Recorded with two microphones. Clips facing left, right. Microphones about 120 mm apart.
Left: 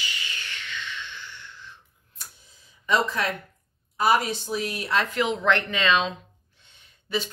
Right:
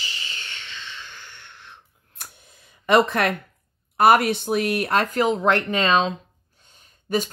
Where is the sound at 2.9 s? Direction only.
65° right (ahead or behind).